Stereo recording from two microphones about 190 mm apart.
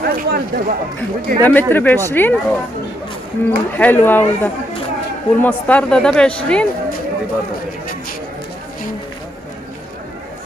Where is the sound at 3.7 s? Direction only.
10° left (ahead or behind).